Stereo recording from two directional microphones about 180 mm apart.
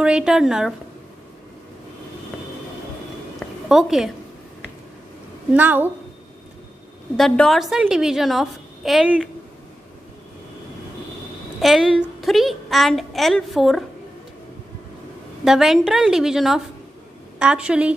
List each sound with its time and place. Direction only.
0.0 s a woman's voice: 5° right (ahead or behind)
3.3 s a sound: centre (ahead or behind)
5.5 s a woman's voice: 10° right (ahead or behind)
7.2 s a woman's voice: centre (ahead or behind)
11.6 s a woman's voice: centre (ahead or behind)
15.4 s a woman's voice: centre (ahead or behind)